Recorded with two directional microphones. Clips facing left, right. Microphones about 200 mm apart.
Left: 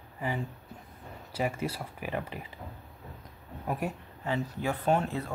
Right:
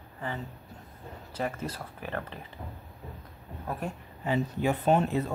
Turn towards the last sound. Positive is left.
turn(degrees=-20)  # may be behind; listen again after turning